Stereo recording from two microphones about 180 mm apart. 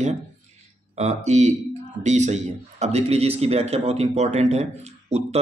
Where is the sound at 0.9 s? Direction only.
40° right (ahead or behind).